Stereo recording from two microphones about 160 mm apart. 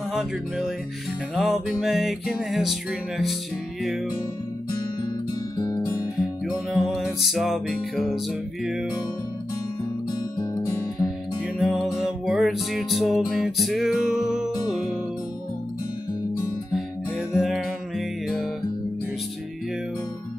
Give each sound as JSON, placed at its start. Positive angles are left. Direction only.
{"t": 0.1, "sound": "music", "side_deg": 0}
{"t": 5.6, "sound": "music", "side_deg": 20}
{"t": 6.5, "sound": "music", "side_deg": -5}
{"t": 10.1, "sound": "music", "side_deg": 25}
{"t": 11.5, "sound": "music", "side_deg": 0}
{"t": 17.3, "sound": "music", "side_deg": -5}